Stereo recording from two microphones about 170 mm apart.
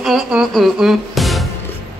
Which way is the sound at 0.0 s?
5° right (ahead or behind).